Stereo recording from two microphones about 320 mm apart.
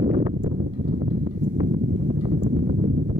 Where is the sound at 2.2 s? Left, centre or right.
Centre.